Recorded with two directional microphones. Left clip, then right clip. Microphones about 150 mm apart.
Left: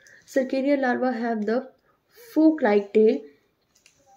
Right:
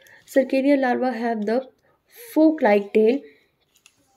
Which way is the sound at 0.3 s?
35° right (ahead or behind).